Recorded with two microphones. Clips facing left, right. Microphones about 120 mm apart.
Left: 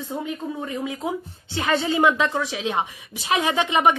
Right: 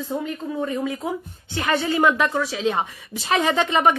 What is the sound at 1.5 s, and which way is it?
A woman's voice, 25° left (ahead or behind).